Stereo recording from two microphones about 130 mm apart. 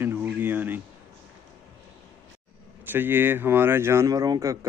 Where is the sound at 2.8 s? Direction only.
15° right (ahead or behind).